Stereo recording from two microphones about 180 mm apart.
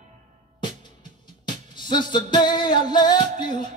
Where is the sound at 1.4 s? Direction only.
25° left (ahead or behind).